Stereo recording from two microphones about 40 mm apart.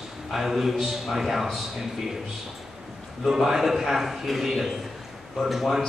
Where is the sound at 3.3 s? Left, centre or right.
Centre.